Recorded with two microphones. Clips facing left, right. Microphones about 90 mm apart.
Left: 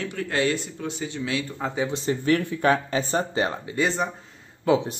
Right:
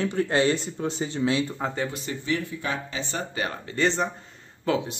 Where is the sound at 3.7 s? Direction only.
5° left (ahead or behind).